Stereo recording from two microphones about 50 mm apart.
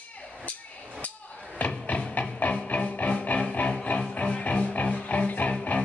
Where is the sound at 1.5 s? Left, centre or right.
Left.